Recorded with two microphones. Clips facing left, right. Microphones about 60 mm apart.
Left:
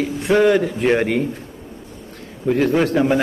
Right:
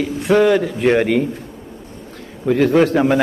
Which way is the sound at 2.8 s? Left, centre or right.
Centre.